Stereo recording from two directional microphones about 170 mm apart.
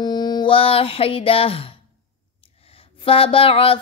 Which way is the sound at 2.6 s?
35° left (ahead or behind).